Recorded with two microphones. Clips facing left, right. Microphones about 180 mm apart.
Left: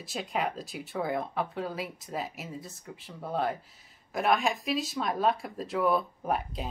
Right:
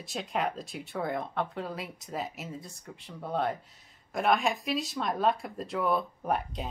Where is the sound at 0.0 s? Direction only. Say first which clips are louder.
Even; centre (ahead or behind).